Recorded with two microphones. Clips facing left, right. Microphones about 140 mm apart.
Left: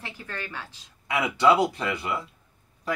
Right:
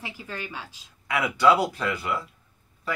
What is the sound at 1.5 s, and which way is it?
Speech, 10° left (ahead or behind).